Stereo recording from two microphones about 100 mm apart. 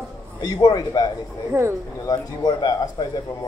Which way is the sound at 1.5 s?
25° right (ahead or behind).